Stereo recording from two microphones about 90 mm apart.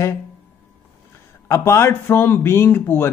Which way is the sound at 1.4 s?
35° left (ahead or behind).